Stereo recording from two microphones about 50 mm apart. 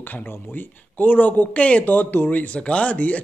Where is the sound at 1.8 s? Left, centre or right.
Left.